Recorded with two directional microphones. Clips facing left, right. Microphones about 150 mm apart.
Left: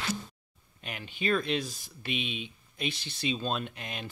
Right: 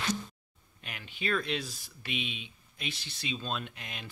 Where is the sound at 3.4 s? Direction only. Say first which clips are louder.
Left 4 dB; 40° left (ahead or behind).